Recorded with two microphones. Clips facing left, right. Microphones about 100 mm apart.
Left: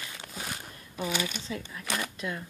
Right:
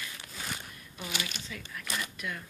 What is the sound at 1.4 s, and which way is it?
Speech, 30° left (ahead or behind).